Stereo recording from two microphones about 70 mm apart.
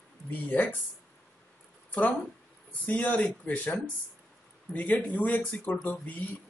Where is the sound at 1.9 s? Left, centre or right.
Left.